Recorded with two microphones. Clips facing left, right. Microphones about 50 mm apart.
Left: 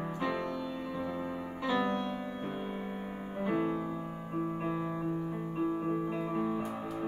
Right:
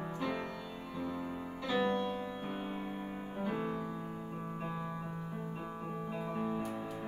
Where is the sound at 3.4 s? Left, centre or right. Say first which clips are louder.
Left 6 dB; centre.